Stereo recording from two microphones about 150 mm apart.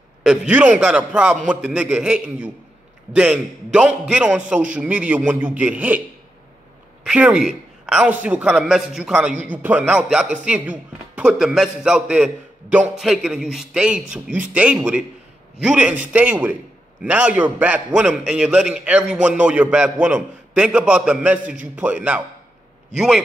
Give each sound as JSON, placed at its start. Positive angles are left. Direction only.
{"t": 0.2, "sound": "a man's voice", "side_deg": -5}
{"t": 7.1, "sound": "a man's voice", "side_deg": -5}